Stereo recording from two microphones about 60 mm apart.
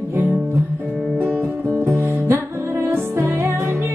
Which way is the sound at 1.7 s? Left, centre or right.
Right.